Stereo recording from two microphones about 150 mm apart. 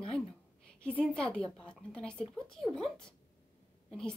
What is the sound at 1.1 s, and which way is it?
A woman's voice, 5° left (ahead or behind).